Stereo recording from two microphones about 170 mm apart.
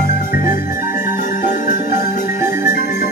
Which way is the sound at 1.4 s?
45° left (ahead or behind).